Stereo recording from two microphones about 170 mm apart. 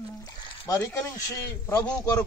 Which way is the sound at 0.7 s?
15° left (ahead or behind).